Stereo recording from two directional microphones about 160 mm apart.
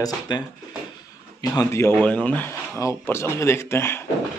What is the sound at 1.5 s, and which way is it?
Speech, 20° left (ahead or behind).